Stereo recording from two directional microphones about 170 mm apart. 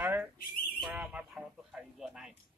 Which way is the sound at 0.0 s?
10° right (ahead or behind).